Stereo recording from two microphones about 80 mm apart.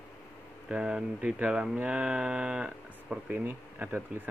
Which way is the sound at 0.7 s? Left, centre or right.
Centre.